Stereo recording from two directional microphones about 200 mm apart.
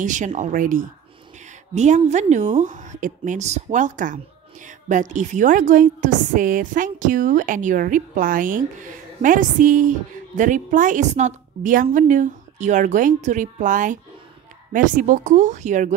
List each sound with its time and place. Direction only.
0.0 s speech: 40° right (ahead or behind)